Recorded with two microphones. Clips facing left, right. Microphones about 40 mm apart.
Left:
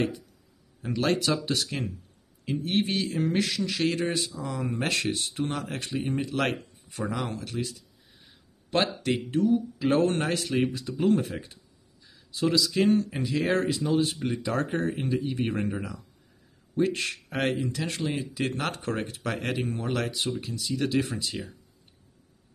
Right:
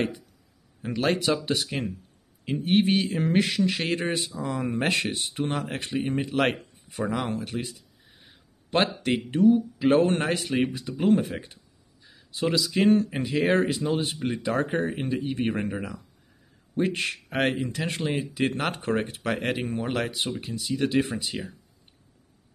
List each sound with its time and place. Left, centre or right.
0.8 s a man's voice: centre